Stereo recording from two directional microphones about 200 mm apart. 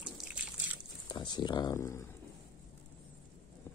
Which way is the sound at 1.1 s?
20° left (ahead or behind).